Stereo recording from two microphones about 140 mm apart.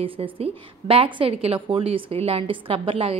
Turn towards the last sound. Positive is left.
turn(degrees=-40)  # may be behind; listen again after turning